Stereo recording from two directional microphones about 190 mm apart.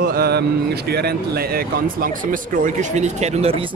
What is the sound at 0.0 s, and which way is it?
Speech, 55° right (ahead or behind).